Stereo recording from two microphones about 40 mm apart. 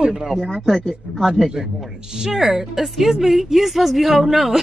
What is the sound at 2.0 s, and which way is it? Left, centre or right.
Speech, centre.